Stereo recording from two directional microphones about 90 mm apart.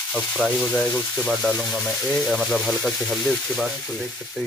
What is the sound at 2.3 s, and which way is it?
Speech, centre (ahead or behind).